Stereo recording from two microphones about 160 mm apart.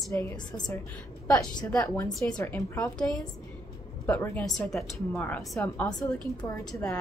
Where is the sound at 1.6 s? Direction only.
10° left (ahead or behind).